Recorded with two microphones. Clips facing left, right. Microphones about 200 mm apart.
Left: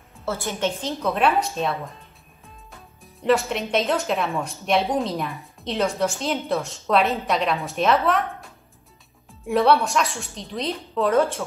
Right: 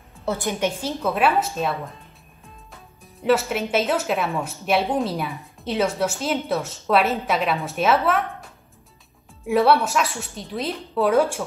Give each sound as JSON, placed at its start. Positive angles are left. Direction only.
{"t": 0.2, "sound": "a woman's voice", "side_deg": -15}
{"t": 9.5, "sound": "a woman's voice", "side_deg": -5}